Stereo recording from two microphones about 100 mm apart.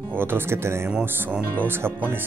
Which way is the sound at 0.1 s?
20° right (ahead or behind).